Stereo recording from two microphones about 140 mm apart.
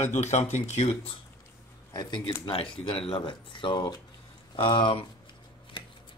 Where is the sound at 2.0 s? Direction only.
30° left (ahead or behind).